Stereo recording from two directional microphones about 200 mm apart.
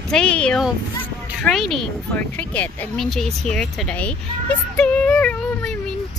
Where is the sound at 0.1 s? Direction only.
5° left (ahead or behind).